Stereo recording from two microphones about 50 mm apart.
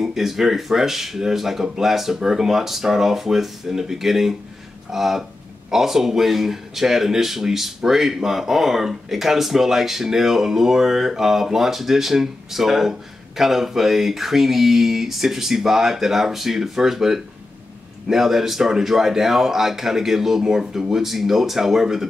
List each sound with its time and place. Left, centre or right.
0.0 s a man's voice: centre